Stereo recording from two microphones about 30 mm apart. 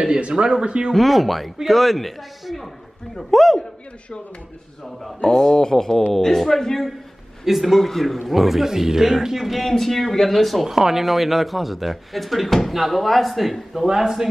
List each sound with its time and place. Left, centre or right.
0.3 s speech: right
0.9 s speech: centre
5.2 s speech: left
7.4 s speech: centre
7.8 s a man's voice: centre
9.6 s speech: centre
13.8 s a man's voice: centre